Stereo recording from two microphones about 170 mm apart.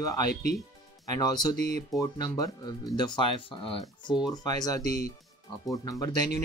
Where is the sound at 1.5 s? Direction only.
40° right (ahead or behind).